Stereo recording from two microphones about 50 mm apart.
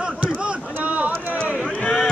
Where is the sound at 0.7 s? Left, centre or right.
Right.